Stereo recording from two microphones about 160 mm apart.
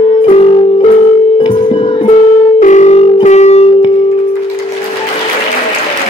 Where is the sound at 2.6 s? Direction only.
50° left (ahead or behind).